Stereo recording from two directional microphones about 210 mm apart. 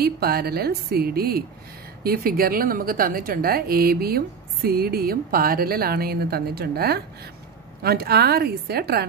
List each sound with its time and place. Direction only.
0.0 s a woman's voice: 45° right (ahead or behind)